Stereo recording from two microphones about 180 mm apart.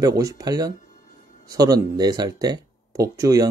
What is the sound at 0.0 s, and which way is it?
A man's voice, 20° right (ahead or behind).